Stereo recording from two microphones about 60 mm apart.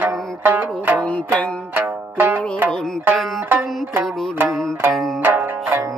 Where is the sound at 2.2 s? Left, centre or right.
Right.